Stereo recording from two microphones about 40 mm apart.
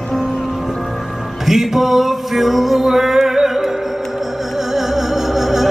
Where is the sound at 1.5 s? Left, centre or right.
Centre.